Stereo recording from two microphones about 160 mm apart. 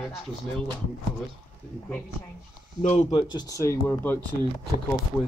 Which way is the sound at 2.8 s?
45° left (ahead or behind).